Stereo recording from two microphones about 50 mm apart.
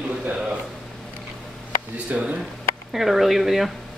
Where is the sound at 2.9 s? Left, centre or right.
Centre.